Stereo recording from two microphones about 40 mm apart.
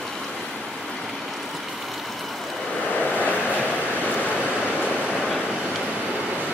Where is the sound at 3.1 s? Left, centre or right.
Left.